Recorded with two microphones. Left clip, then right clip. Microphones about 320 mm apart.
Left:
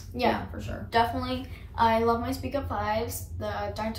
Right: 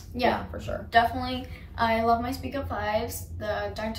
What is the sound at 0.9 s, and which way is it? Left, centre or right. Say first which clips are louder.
A woman's voice: right 2 dB; centre.